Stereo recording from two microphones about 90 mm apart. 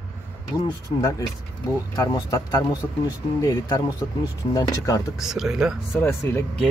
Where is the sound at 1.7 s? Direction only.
40° left (ahead or behind).